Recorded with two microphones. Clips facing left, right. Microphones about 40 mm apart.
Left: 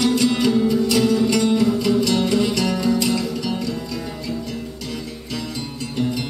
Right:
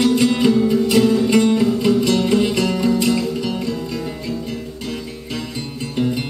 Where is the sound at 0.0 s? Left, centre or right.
Centre.